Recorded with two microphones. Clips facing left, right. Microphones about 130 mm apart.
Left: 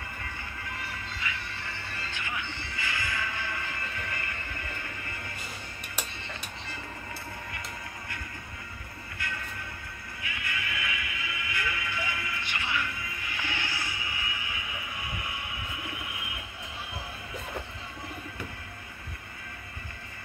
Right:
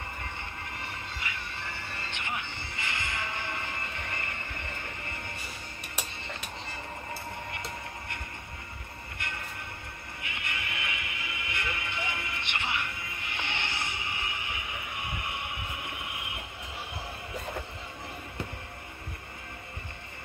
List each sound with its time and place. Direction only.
0.2 s music: 25° right (ahead or behind)
10.2 s neigh: 25° right (ahead or behind)